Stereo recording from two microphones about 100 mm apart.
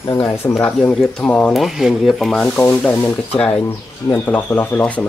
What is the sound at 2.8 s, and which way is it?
Speech, 15° left (ahead or behind).